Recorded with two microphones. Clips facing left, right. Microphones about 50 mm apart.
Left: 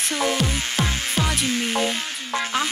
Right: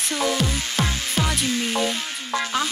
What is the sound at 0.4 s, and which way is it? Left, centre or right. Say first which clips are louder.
Music: even; centre.